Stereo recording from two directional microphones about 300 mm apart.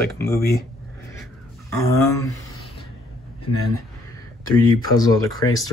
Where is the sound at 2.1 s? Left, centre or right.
Centre.